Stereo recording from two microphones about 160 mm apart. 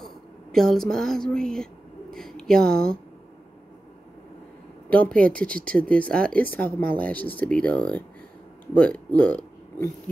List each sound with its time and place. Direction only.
0.0 s a sound: centre (ahead or behind)
4.8 s speech: 10° left (ahead or behind)
6.6 s speech: 60° right (ahead or behind)
7.0 s speech: 10° left (ahead or behind)